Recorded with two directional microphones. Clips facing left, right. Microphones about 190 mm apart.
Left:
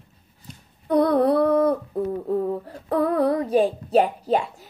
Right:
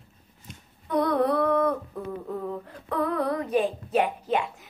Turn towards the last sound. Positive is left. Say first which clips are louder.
# left 5 dB
turn(degrees=35)  # may be behind; listen again after turning